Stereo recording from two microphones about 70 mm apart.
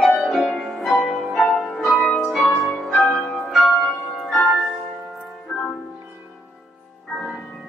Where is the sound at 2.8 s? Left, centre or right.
Centre.